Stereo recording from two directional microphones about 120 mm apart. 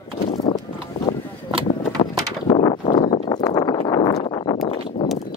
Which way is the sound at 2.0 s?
50° left (ahead or behind).